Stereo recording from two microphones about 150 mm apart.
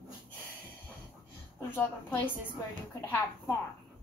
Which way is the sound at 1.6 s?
15° left (ahead or behind).